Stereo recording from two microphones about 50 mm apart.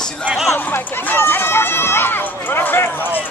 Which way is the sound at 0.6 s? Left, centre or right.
Left.